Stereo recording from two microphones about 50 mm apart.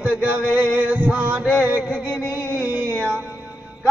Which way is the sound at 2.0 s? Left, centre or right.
Left.